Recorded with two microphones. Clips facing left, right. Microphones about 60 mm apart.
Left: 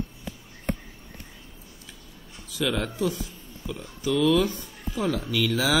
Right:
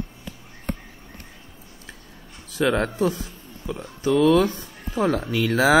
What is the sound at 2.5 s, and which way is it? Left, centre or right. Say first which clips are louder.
Speech: right 6 dB; right.